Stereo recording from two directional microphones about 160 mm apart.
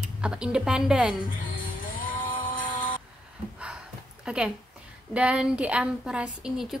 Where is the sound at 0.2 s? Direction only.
5° right (ahead or behind).